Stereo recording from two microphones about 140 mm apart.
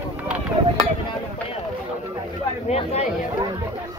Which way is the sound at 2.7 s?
50° left (ahead or behind).